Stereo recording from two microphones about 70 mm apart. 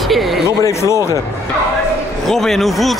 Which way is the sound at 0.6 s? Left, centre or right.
Left.